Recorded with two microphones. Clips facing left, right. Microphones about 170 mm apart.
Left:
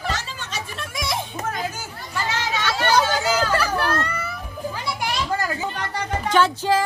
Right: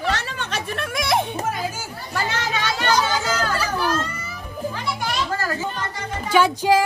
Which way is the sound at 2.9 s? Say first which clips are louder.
Left 2 dB; 60° left (ahead or behind).